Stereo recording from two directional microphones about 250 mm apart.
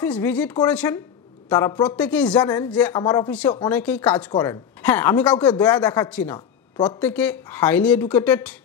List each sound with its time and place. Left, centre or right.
0.0 s speech: centre
6.3 s a sound: centre
7.0 s speech: centre